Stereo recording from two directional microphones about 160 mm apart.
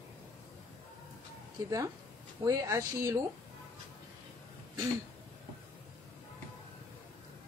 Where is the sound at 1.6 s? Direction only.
20° right (ahead or behind).